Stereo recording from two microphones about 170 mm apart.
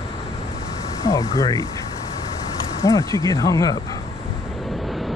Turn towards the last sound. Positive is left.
turn(degrees=20)  # may be behind; listen again after turning